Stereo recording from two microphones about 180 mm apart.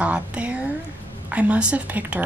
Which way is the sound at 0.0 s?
5° right (ahead or behind).